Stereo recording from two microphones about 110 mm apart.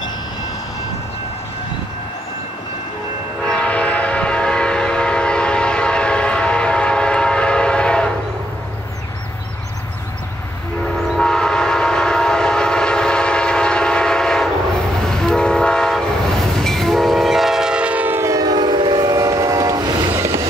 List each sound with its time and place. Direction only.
3.4 s train: 10° left (ahead or behind)
11.1 s train: 5° left (ahead or behind); by 19.8 s 35° right (ahead or behind)